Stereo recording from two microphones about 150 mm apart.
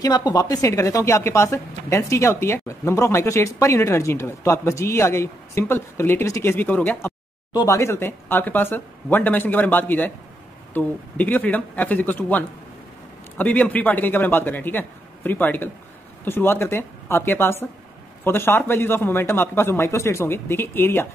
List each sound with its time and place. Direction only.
0.0 s a woman's voice: 25° left (ahead or behind)